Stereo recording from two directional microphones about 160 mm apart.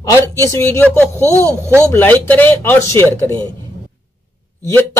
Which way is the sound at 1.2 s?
20° right (ahead or behind).